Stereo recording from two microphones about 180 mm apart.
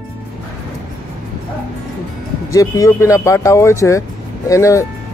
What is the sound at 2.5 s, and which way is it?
Speech, 20° left (ahead or behind).